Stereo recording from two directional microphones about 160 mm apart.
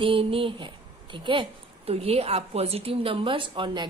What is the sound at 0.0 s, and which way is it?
A woman's voice, 35° right (ahead or behind).